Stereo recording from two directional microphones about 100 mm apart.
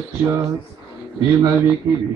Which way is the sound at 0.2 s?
25° right (ahead or behind).